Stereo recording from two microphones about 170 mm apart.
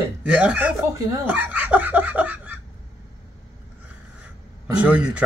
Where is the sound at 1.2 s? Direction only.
10° right (ahead or behind).